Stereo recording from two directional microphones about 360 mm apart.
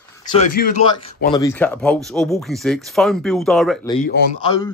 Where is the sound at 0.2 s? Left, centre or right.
Centre.